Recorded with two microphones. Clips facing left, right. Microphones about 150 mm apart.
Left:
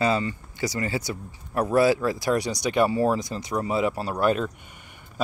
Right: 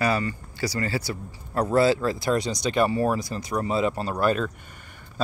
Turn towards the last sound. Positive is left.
turn(degrees=15)  # may be behind; listen again after turning